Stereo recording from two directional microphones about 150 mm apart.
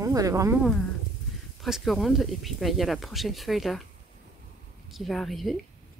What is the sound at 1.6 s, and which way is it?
Speech, centre (ahead or behind).